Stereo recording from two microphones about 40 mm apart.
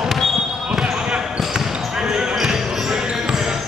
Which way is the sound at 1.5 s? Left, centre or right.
Centre.